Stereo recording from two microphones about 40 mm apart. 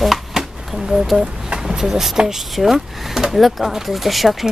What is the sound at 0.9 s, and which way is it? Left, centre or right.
Speech, centre.